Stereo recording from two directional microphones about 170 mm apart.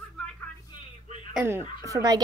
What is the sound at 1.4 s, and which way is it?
Speech, 15° right (ahead or behind).